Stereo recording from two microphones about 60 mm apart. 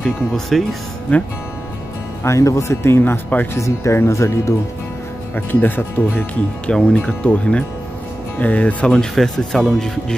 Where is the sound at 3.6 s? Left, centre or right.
Left.